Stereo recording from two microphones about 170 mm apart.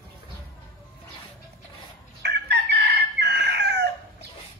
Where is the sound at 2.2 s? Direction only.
85° right.